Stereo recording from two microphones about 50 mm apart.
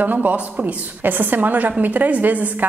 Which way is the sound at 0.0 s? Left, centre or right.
Right.